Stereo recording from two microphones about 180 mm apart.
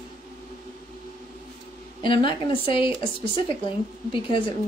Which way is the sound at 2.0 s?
30° left (ahead or behind).